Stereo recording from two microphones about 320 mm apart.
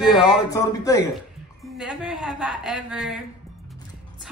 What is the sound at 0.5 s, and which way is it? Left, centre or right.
Speech, centre.